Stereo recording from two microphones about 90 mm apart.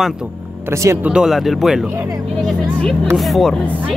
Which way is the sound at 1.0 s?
5° right (ahead or behind).